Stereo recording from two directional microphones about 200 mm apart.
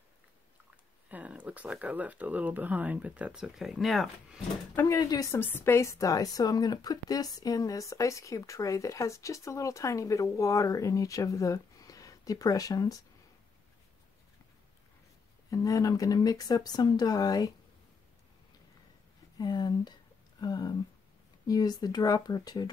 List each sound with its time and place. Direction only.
1.0 s speech: 5° right (ahead or behind)
4.7 s a woman's voice: 15° left (ahead or behind)
15.5 s speech: 15° left (ahead or behind)
19.3 s speech: 20° left (ahead or behind)